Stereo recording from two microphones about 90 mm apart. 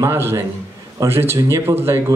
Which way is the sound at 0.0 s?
25° right (ahead or behind).